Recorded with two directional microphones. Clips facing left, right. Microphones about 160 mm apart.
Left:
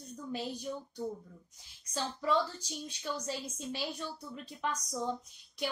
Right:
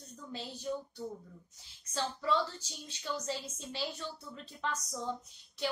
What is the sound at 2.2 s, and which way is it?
A woman's voice, 15° left (ahead or behind).